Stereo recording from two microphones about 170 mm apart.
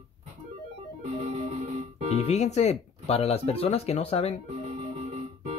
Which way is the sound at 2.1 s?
40° left (ahead or behind).